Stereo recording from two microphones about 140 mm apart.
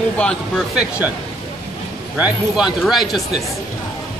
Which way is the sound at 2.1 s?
10° right (ahead or behind).